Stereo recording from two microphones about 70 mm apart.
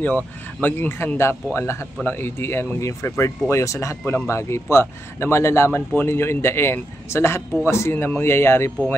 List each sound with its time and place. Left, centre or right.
0.0 s speech: left
2.8 s speech: left
5.7 s speech: left
6.0 s speech: left